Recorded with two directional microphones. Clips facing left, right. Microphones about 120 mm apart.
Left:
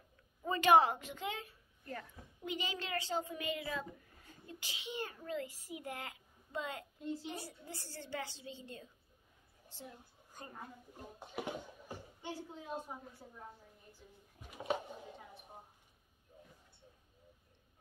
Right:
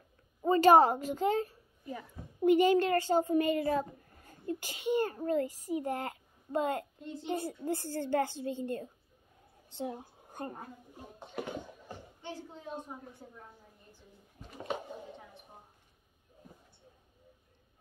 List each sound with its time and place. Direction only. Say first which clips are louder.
0.4 s a child's voice: right 6 dB; 35° right (ahead or behind)
1.9 s a woman's voice: right 4 dB; 10° right (ahead or behind)
2.4 s a child's voice: right 17 dB; 50° right (ahead or behind)
7.0 s a child's voice: left 1 dB; 5° left (ahead or behind)
7.2 s a child's voice: right 12 dB; 50° right (ahead or behind)
9.8 s a woman's voice: right 14 dB; 65° right (ahead or behind)
11.1 s a woman's voice: right 3 dB; 5° left (ahead or behind)
14.5 s a sound: even; 5° left (ahead or behind)